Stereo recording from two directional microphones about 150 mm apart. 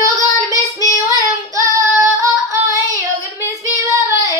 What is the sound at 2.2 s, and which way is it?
Singing, 20° right (ahead or behind).